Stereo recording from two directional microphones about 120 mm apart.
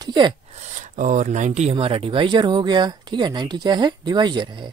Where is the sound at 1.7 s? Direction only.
50° right (ahead or behind).